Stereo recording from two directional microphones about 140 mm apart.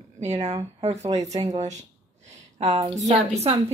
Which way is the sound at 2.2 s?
55° right (ahead or behind).